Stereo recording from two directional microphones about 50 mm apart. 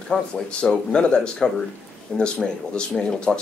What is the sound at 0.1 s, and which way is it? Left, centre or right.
Speech, centre.